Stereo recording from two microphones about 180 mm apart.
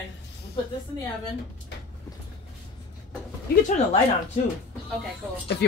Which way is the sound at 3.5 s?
60° left (ahead or behind).